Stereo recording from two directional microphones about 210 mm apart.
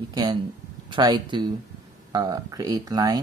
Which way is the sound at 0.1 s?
20° right (ahead or behind).